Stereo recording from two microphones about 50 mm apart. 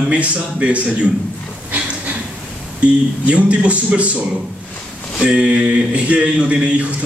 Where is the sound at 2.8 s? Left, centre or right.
Right.